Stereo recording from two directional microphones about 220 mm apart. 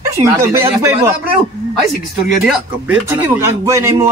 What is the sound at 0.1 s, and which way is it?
A man's voice, 15° right (ahead or behind).